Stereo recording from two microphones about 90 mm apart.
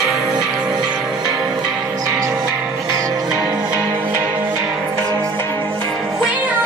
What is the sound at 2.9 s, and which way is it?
Music, 40° right (ahead or behind).